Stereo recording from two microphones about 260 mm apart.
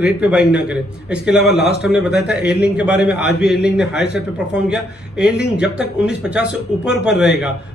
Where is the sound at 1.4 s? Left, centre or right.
Left.